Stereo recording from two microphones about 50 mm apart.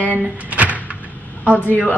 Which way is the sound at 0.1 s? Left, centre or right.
Right.